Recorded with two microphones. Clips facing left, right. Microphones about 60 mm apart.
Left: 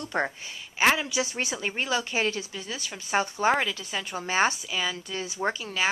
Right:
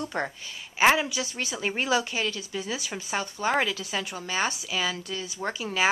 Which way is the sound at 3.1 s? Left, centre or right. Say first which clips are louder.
Left 4 dB; left.